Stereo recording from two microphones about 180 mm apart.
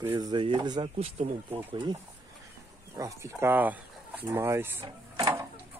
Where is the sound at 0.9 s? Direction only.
35° right (ahead or behind).